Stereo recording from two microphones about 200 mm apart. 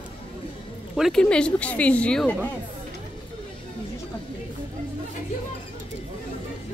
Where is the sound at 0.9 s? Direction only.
Centre (ahead or behind).